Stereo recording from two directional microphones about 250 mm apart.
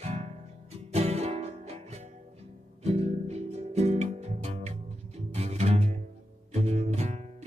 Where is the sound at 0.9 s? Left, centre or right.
Right.